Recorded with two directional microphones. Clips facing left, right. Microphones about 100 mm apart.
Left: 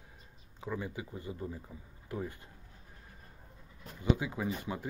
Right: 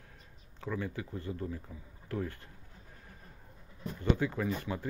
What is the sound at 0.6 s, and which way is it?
Speech, 15° left (ahead or behind).